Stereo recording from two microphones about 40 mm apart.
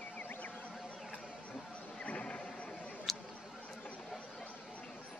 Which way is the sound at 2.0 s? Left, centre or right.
Left.